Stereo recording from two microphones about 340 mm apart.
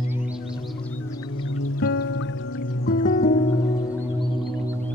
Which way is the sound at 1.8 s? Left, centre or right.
Left.